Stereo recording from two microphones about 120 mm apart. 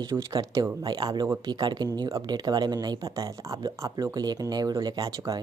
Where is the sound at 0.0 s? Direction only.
30° right (ahead or behind).